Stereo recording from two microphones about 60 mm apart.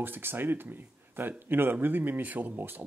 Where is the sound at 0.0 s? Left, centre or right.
Right.